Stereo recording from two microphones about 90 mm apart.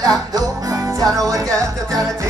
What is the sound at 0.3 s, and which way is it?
Music, 40° right (ahead or behind).